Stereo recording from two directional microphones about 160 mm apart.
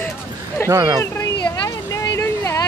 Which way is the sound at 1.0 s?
20° left (ahead or behind).